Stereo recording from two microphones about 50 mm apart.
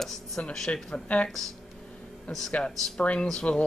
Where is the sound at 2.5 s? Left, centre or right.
Left.